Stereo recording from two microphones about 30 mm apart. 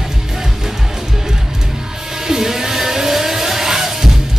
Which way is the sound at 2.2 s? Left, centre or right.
Centre.